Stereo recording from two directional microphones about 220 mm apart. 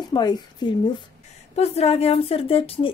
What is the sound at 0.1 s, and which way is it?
A woman's voice, 20° left (ahead or behind).